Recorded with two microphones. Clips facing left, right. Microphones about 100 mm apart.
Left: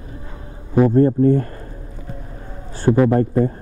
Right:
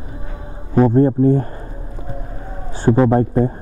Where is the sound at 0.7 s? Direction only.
25° right (ahead or behind).